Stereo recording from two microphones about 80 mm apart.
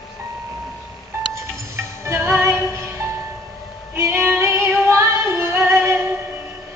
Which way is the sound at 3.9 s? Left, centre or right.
Right.